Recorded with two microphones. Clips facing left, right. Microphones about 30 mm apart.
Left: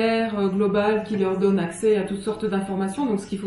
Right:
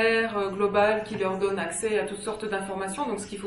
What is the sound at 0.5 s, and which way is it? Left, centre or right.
Speech, right.